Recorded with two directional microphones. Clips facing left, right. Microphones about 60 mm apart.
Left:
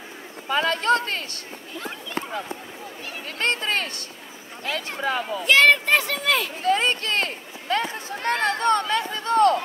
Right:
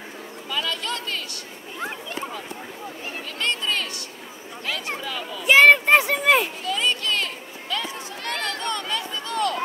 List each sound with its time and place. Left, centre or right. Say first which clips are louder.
0.5 s a man's voice: left 8 dB; left
3.3 s a man's voice: left 2 dB; left
5.0 s a man's voice: left 6 dB; left
5.4 s a child's voice: right 3 dB; centre
6.6 s a sound: left 3 dB; left